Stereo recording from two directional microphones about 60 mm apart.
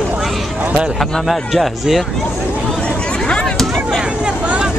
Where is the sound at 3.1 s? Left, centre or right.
Centre.